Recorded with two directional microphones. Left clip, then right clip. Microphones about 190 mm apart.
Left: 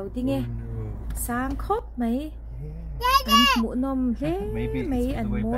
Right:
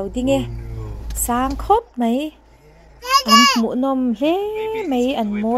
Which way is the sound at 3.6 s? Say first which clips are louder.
Right 7 dB; 15° right (ahead or behind).